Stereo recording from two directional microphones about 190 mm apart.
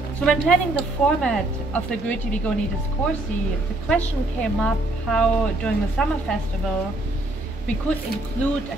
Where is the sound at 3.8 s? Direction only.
5° left (ahead or behind).